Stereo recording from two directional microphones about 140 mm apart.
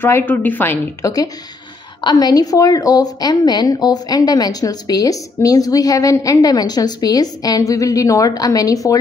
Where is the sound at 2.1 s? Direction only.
30° left (ahead or behind).